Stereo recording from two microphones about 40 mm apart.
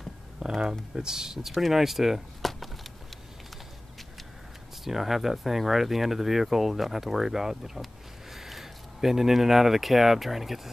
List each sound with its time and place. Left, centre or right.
0.6 s speech: centre
4.8 s speech: centre